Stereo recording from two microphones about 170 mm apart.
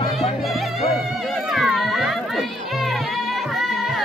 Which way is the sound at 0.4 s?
Centre (ahead or behind).